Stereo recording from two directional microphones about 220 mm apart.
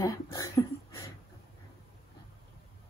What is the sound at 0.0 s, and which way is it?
Speech, 15° left (ahead or behind).